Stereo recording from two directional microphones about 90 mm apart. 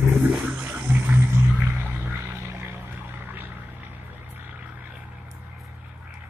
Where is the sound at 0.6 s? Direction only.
15° right (ahead or behind).